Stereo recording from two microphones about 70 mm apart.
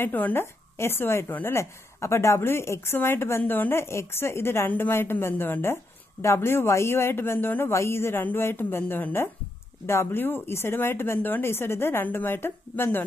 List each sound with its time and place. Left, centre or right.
0.0 s a woman's voice: left